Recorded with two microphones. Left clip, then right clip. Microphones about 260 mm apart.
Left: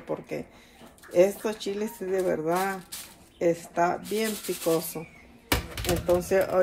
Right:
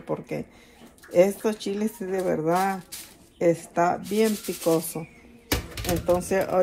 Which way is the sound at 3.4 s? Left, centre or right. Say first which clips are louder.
Right 2 dB; right.